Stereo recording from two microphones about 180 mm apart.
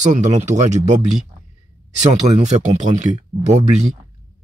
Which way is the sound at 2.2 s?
40° right (ahead or behind).